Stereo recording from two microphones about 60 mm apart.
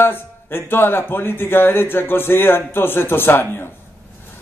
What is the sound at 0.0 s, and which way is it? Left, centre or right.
A man's voice, left.